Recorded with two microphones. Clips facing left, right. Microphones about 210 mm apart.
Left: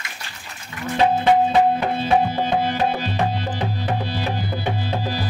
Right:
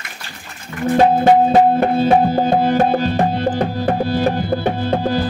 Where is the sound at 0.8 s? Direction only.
45° right (ahead or behind).